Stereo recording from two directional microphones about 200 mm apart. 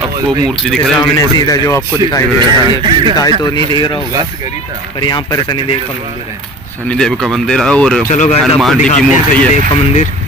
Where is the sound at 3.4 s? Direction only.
20° left (ahead or behind).